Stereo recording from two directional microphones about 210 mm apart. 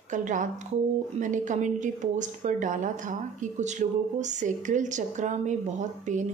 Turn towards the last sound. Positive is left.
turn(degrees=-35)  # may be behind; listen again after turning